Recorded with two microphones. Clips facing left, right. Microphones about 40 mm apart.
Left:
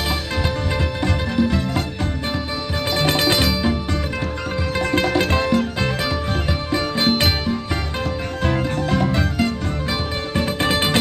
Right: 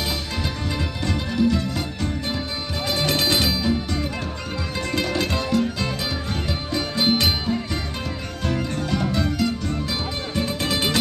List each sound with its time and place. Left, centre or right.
0.4 s music: left
3.1 s music: left
8.4 s music: left